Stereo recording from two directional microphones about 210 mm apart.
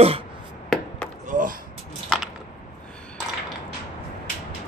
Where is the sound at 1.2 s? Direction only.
40° right (ahead or behind).